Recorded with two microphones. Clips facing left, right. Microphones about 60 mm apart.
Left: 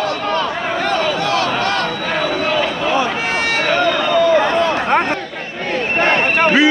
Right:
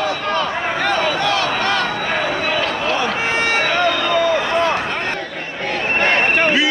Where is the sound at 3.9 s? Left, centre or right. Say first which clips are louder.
Left 2 dB; centre.